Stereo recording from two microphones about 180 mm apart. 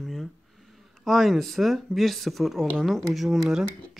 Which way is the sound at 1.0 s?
Centre (ahead or behind).